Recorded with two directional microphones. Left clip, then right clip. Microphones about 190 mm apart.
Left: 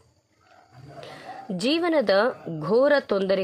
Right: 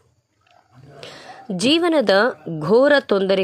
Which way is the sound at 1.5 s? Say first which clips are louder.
Right 6 dB; 15° right (ahead or behind).